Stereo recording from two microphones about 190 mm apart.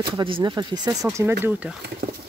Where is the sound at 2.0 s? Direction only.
55° right (ahead or behind).